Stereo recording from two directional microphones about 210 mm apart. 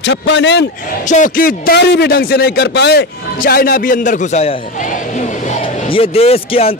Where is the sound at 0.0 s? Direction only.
55° left (ahead or behind).